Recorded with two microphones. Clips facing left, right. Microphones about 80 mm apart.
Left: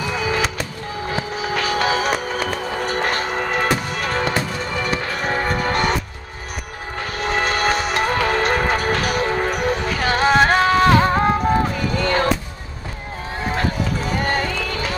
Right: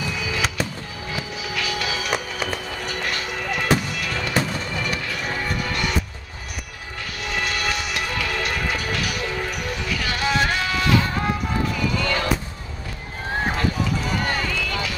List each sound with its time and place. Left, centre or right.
0.1 s fireworks: left
1.1 s music: left
7.0 s music: left
13.6 s run: left